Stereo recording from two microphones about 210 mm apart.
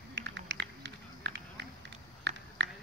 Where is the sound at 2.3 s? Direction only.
60° right (ahead or behind).